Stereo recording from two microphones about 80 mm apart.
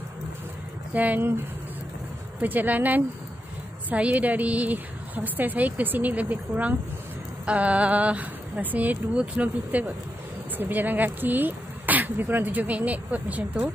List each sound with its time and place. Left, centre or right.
0.9 s speech: right
2.4 s speech: right